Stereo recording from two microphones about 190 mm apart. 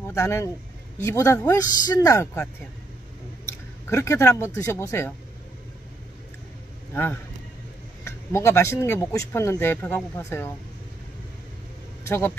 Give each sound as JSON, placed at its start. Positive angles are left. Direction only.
{"t": 0.1, "sound": "speech", "side_deg": 15}
{"t": 3.4, "sound": "speech", "side_deg": 15}
{"t": 6.9, "sound": "a man's voice", "side_deg": 10}
{"t": 12.0, "sound": "speech", "side_deg": 10}